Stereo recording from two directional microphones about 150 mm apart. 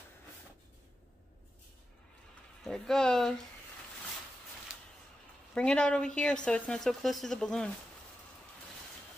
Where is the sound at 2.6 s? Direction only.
5° left (ahead or behind).